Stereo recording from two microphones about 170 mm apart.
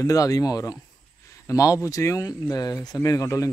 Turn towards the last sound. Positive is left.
turn(degrees=20)  # may be behind; listen again after turning